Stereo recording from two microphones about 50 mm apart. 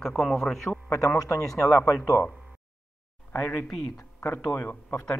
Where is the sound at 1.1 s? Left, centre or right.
Left.